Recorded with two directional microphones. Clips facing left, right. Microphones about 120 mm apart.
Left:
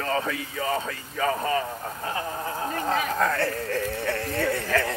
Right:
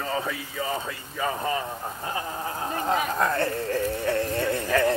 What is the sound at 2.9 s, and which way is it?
Speech, 15° right (ahead or behind).